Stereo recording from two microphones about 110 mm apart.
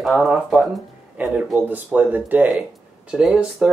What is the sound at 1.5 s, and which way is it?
Speech, 15° right (ahead or behind).